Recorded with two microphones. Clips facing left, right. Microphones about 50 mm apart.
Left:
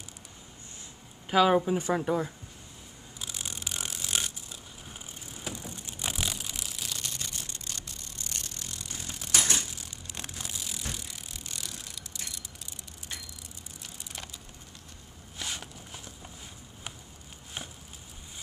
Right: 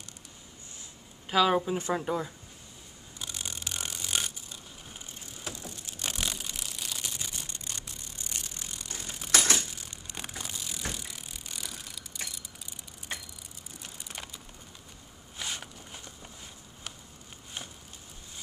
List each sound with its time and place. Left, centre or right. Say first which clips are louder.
1.3 s speech: left 2 dB; centre
3.2 s a sound: even; centre
5.5 s vehicle: left 2 dB; left
6.0 s a sound: left 1 dB; centre
8.8 s mechanisms: right 1 dB; centre
9.6 s bicycle: even; centre
13.9 s crushing: right 1 dB; centre
15.3 s walk: even; centre